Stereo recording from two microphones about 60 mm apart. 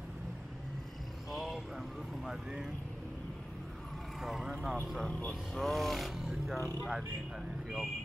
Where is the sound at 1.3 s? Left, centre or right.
Centre.